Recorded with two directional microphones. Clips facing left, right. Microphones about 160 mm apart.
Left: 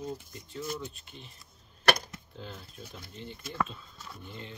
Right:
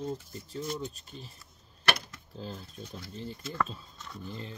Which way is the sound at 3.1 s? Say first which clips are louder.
Right 4 dB; 35° right (ahead or behind).